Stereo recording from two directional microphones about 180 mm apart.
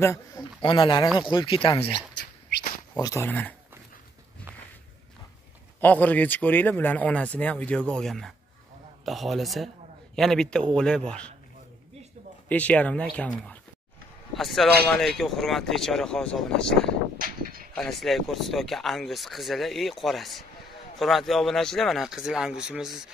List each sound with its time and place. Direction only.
0.0 s a man's voice: 15° left (ahead or behind)
3.0 s speech: 20° left (ahead or behind)
3.3 s speech: 10° left (ahead or behind)
5.8 s speech: 10° left (ahead or behind)
12.4 s speech: 10° left (ahead or behind)
17.2 s a sound: 55° right (ahead or behind)
17.7 s speech: centre (ahead or behind)